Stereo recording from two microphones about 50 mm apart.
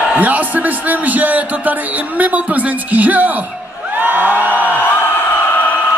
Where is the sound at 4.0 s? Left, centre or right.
Right.